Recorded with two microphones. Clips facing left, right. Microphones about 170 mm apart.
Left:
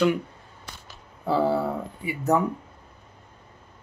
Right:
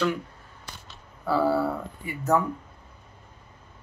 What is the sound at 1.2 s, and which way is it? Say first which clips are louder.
Speech: even; 20° left (ahead or behind).